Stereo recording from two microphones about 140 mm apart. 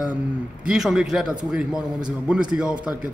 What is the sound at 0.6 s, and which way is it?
Speech, 5° right (ahead or behind).